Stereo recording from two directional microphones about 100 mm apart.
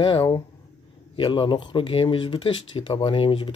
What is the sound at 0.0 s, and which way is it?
Speech, 65° left (ahead or behind).